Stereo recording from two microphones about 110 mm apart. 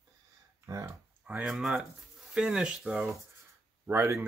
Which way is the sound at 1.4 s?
Centre (ahead or behind).